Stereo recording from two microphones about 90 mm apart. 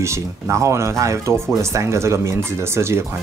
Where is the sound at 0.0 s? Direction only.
35° right (ahead or behind).